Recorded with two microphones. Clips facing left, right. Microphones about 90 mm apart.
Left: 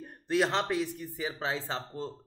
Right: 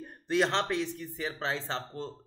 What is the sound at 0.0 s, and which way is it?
Speech, 5° left (ahead or behind).